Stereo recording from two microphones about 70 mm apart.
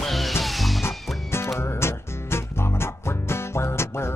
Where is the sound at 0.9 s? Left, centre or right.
Left.